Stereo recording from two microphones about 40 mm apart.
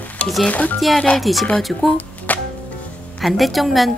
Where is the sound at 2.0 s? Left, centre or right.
Left.